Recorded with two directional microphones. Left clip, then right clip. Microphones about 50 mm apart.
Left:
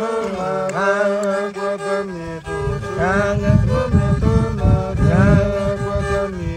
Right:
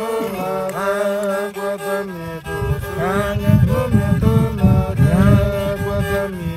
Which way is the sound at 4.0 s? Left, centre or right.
Left.